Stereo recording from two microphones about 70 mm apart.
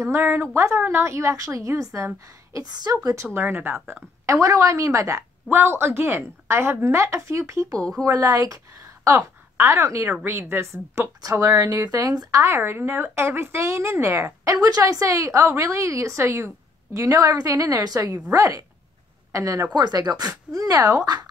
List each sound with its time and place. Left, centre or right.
0.0 s a woman's voice: right
2.6 s a woman's voice: right
3.3 s a woman's voice: right
4.3 s a woman's voice: right
9.1 s a woman's voice: right
11.1 s speech: right
12.4 s a woman's voice: right
19.7 s speech: right